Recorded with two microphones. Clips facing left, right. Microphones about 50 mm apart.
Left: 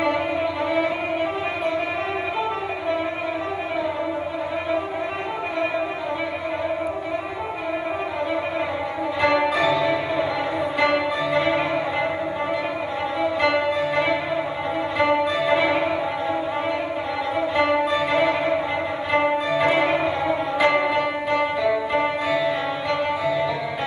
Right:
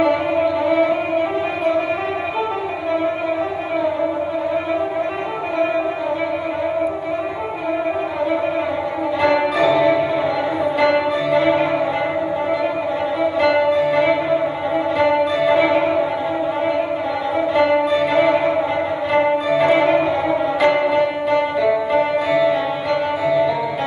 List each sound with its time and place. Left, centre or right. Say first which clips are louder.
0.0 s music: right 5 dB; centre
9.2 s music: right 3 dB; centre
13.4 s music: right 6 dB; centre
17.6 s music: right 5 dB; centre